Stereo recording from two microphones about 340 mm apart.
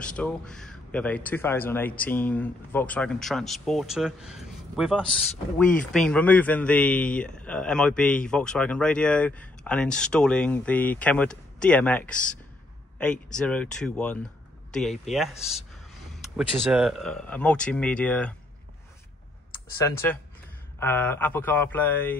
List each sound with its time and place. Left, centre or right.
0.0 s a man's voice: centre
20.8 s a man's voice: centre